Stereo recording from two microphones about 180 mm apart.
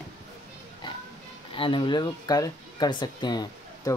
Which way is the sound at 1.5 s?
30° left (ahead or behind).